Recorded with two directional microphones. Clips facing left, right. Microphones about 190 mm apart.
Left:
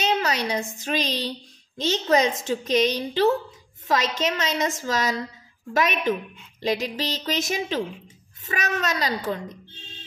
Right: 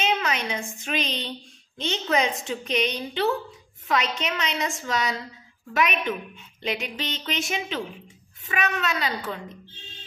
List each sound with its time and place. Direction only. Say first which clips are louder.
0.0 s a woman's voice: left 2 dB; 35° left (ahead or behind)